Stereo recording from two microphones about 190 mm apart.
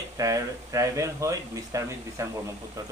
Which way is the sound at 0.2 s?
15° right (ahead or behind).